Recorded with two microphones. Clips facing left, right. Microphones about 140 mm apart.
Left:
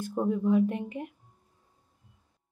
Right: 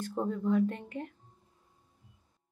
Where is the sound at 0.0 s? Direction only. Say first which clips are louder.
Left 4 dB; 10° left (ahead or behind).